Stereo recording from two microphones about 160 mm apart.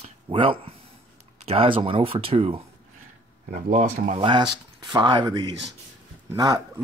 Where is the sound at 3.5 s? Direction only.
55° right (ahead or behind).